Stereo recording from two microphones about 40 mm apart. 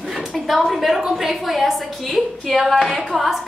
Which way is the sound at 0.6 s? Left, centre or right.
Centre.